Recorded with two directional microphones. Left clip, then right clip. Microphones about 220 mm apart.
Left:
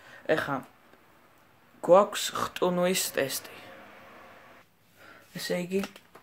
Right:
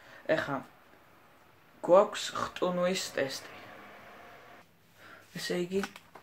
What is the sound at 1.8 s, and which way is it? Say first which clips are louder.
Speech: left 3 dB; 45° left (ahead or behind).